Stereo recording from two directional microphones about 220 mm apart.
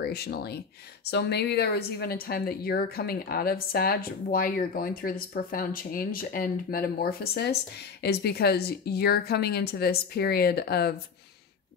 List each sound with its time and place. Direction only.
0.0 s speech: 45° left (ahead or behind)